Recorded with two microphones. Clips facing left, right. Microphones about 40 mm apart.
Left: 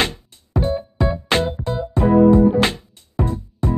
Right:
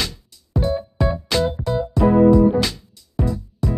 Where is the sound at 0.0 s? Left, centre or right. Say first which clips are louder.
Left 6 dB; left.